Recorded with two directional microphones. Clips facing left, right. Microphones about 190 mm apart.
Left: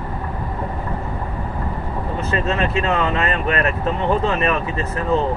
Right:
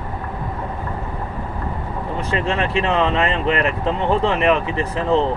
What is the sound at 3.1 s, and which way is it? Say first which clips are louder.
Speech: right 1 dB; 15° right (ahead or behind).